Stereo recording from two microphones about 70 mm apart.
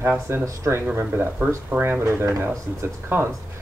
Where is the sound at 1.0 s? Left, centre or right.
Right.